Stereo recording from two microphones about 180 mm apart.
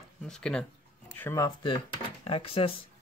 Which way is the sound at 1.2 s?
15° left (ahead or behind).